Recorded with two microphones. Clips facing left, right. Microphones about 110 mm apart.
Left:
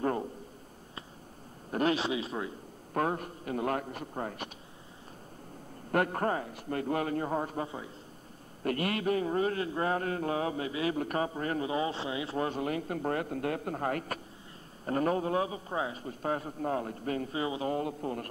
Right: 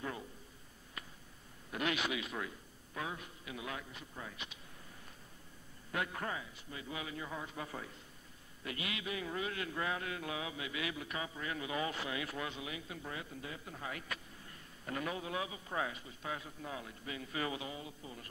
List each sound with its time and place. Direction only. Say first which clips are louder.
0.0 s a sound: left 12 dB; 50° left (ahead or behind)
1.7 s a man's voice: left 8 dB; 35° left (ahead or behind)
2.9 s a man's voice: left 12 dB; 55° left (ahead or behind)
5.9 s a man's voice: left 11 dB; 50° left (ahead or behind)
7.6 s speech: left 6 dB; 20° left (ahead or behind)
8.6 s a man's voice: left 12 dB; 50° left (ahead or behind)
11.0 s a man's voice: left 11 dB; 45° left (ahead or behind)
11.7 s speech: left 6 dB; 30° left (ahead or behind)
12.4 s a man's voice: left 11 dB; 50° left (ahead or behind)
15.7 s speech: left 5 dB; 25° left (ahead or behind)
16.0 s a man's voice: left 10 dB; 45° left (ahead or behind)
17.3 s speech: left 6 dB; 25° left (ahead or behind)
17.6 s a man's voice: left 13 dB; 55° left (ahead or behind)